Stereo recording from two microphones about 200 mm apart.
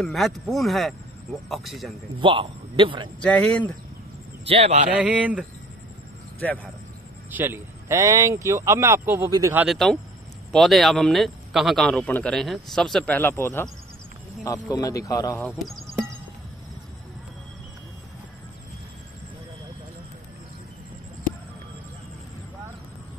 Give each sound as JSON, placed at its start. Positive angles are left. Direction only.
{"t": 0.0, "sound": "speech", "side_deg": 0}
{"t": 2.1, "sound": "a man's voice", "side_deg": -25}
{"t": 3.2, "sound": "speech", "side_deg": 5}
{"t": 4.5, "sound": "speech", "side_deg": -30}
{"t": 4.9, "sound": "speech", "side_deg": -5}
{"t": 6.4, "sound": "speech", "side_deg": 5}
{"t": 7.2, "sound": "speech", "side_deg": -10}
{"t": 9.7, "sound": "speech", "side_deg": 0}